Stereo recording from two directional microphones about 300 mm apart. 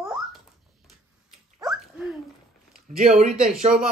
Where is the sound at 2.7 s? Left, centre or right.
Right.